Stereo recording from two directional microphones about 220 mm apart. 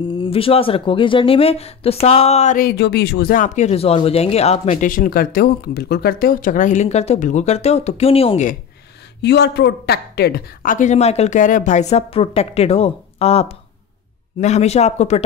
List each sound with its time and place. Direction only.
0.1 s speech: 25° left (ahead or behind)
9.2 s speech: 50° left (ahead or behind); by 15.2 s 30° left (ahead or behind)